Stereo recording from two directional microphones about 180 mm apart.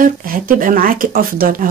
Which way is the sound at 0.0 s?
50° right (ahead or behind).